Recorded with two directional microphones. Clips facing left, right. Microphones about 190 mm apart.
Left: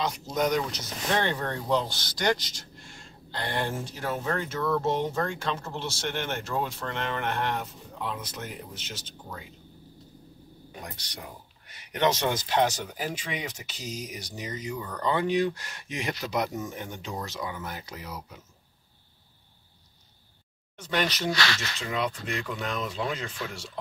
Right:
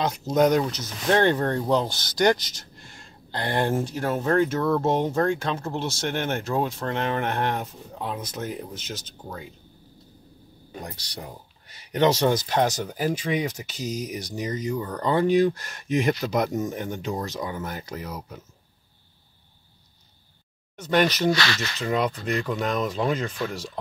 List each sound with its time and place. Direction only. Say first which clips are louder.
0.0 s speech: right 7 dB; 55° right (ahead or behind)
10.8 s speech: right 5 dB; 35° right (ahead or behind)
20.7 s speech: right 7 dB; 45° right (ahead or behind)